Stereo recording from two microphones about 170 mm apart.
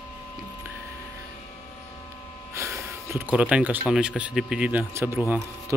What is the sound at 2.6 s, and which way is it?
Speech, 15° right (ahead or behind).